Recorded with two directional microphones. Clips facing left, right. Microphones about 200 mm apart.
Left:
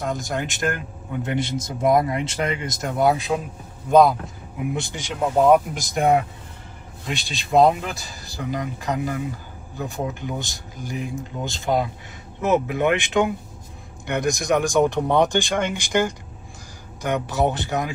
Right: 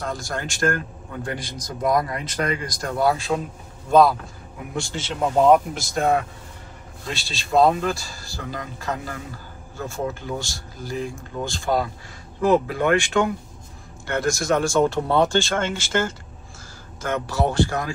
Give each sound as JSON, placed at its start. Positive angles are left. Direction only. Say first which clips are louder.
{"t": 0.0, "sound": "a man's voice", "louder": "left 3 dB", "side_deg": 20}
{"t": 5.1, "sound": "speech", "louder": "even", "side_deg": 5}
{"t": 5.8, "sound": "a man's voice", "louder": "left 2 dB", "side_deg": 20}